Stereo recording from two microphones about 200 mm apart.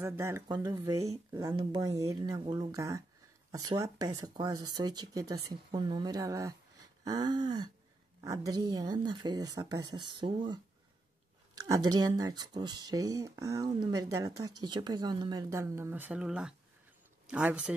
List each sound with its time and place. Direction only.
0.0 s speech: 15° right (ahead or behind)